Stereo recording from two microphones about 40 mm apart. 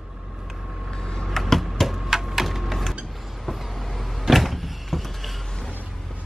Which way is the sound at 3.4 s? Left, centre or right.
Centre.